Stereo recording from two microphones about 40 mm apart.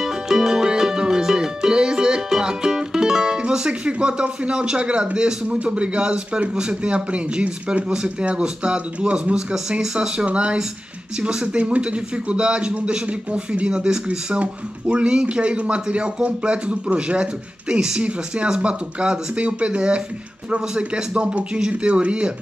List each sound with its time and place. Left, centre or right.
0.0 s music: centre
8.0 s speech: right
9.5 s speech: centre